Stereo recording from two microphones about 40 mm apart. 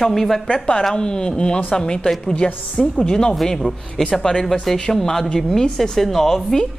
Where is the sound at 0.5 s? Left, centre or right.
Left; by 6.6 s centre.